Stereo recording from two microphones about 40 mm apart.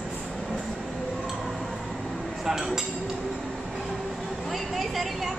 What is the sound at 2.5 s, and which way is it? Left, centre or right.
Speech, centre.